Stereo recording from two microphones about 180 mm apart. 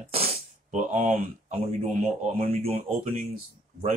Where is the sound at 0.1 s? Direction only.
35° right (ahead or behind).